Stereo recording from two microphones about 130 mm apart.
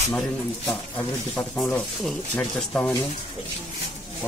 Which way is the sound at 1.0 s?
15° left (ahead or behind).